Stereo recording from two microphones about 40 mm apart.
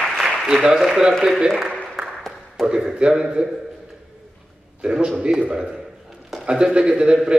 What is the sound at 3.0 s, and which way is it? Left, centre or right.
Speech, centre.